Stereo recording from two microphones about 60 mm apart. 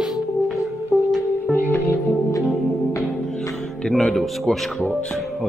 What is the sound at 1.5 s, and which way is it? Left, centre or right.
Music, left.